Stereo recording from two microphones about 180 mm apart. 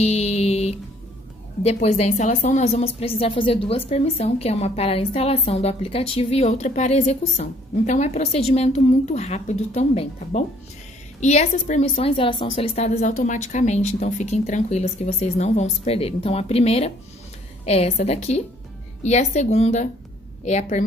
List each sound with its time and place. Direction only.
0.0 s music: 35° left (ahead or behind)
1.6 s a woman's voice: 35° left (ahead or behind)